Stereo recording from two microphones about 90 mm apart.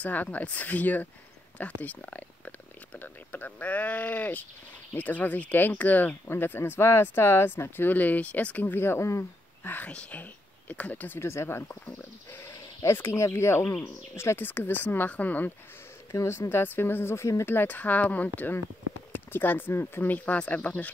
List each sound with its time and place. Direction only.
0.0 s speech: 20° left (ahead or behind)
16.1 s speech: 35° left (ahead or behind); by 20.9 s 15° left (ahead or behind)